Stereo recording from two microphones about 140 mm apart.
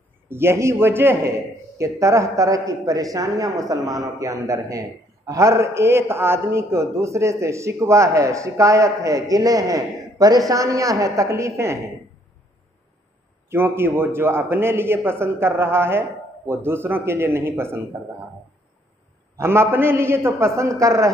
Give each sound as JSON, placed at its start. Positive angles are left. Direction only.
{"t": 0.3, "sound": "a man's voice", "side_deg": -15}
{"t": 13.5, "sound": "a man's voice", "side_deg": -15}
{"t": 19.3, "sound": "a man's voice", "side_deg": -20}